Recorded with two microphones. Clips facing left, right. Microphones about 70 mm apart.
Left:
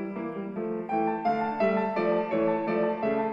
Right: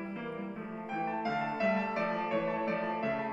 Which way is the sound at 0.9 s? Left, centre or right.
Left.